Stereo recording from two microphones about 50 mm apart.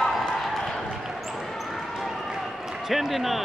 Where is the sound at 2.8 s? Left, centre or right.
Centre.